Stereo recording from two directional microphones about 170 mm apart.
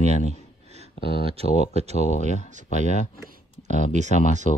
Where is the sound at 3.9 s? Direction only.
45° right (ahead or behind).